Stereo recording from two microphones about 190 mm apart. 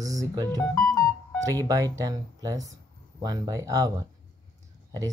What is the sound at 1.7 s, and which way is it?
Speech, 20° right (ahead or behind).